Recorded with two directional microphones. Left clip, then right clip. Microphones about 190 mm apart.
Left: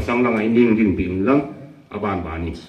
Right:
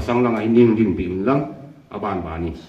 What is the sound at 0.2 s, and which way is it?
A man's voice, 55° right (ahead or behind).